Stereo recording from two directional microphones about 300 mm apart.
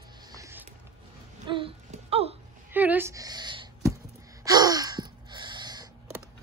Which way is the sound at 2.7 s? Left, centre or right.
Centre.